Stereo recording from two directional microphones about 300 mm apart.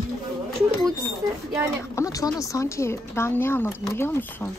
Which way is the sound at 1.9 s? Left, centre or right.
Centre.